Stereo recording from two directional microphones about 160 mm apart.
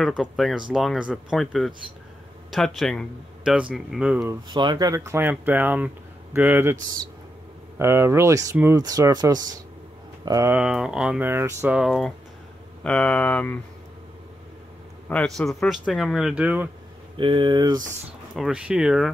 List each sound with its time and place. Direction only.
0.0 s speech: centre (ahead or behind)
4.5 s speech: 25° right (ahead or behind)
10.5 s speech: 5° right (ahead or behind)
11.8 s speech: centre (ahead or behind)
15.0 s speech: 5° left (ahead or behind)
17.2 s speech: 30° right (ahead or behind)
18.3 s speech: 5° right (ahead or behind)